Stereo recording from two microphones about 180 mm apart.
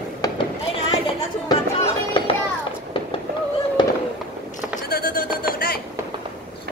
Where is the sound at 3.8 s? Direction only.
25° left (ahead or behind).